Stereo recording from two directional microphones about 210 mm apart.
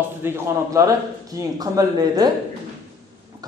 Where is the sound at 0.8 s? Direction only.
15° right (ahead or behind).